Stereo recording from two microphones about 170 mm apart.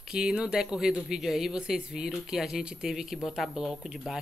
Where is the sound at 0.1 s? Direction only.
5° right (ahead or behind).